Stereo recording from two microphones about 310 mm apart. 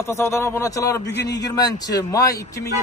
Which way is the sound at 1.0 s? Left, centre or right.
Left.